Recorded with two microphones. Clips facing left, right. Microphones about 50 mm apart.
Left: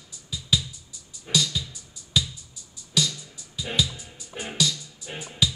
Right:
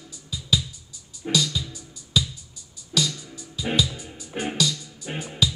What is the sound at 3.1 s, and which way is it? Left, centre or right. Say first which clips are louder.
Music: right 2 dB; centre.